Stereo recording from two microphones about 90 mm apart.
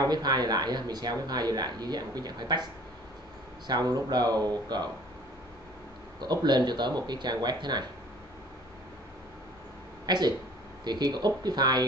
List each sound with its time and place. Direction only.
0.0 s speech: 50° right (ahead or behind)
6.2 s speech: 55° right (ahead or behind)
10.0 s speech: 50° right (ahead or behind)